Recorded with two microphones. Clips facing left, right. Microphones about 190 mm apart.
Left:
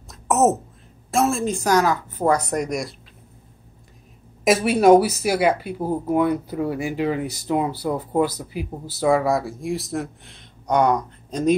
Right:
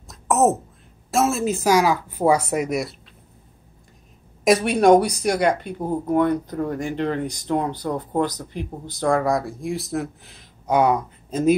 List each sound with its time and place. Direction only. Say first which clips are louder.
0.1 s a sound: even; centre (ahead or behind)
1.1 s speech: even; centre (ahead or behind)
4.5 s speech: left 1 dB; 5° left (ahead or behind)